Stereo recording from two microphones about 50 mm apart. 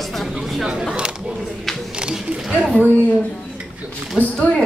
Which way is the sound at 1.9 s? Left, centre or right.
Centre.